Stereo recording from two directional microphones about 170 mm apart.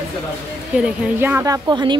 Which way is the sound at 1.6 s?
25° right (ahead or behind).